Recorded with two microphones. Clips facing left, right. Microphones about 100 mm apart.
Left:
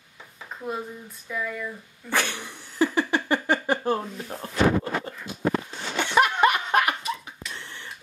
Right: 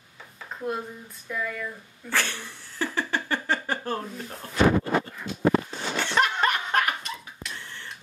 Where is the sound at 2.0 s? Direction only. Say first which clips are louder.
Left 2 dB; 15° left (ahead or behind).